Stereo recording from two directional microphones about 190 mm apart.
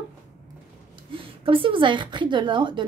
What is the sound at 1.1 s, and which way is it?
A woman's voice, 25° right (ahead or behind).